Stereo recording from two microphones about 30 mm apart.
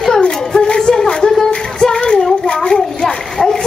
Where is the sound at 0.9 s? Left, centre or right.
Centre.